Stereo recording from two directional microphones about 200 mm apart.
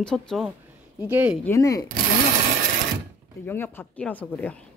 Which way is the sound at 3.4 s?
10° left (ahead or behind).